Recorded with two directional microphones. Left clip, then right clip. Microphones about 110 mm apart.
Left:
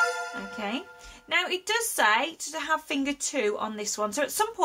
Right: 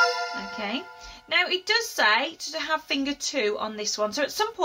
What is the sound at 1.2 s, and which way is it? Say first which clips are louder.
A woman's voice: right 3 dB; 35° left (ahead or behind).